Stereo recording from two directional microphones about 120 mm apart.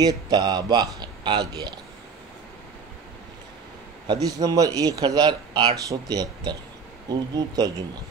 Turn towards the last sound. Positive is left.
turn(degrees=-35)  # may be behind; listen again after turning